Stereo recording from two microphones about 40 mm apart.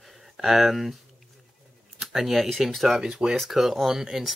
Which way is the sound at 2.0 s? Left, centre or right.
Centre.